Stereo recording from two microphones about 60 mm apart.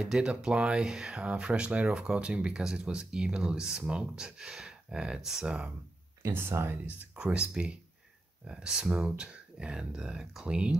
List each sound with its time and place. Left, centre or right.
0.0 s speech: centre
6.2 s speech: right
6.9 s speech: right